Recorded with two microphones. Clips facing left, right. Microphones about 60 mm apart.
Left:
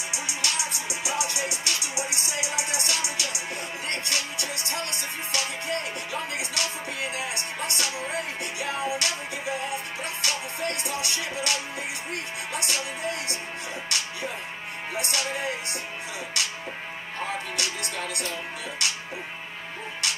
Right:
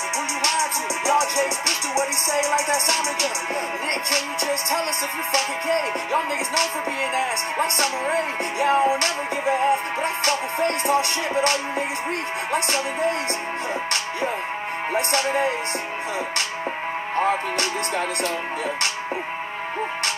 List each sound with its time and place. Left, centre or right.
0.4 s music: right
12.5 s music: right
15.0 s music: right
17.2 s music: right